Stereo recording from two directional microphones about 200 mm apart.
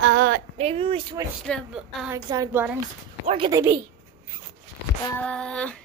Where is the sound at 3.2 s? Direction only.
25° right (ahead or behind).